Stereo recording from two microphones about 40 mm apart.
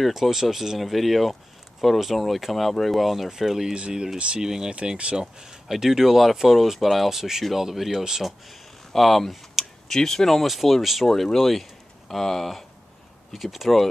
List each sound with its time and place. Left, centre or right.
0.0 s speech: centre
3.7 s speech: right
4.7 s speech: right
5.1 s speech: centre
8.2 s a sound: centre
9.9 s speech: centre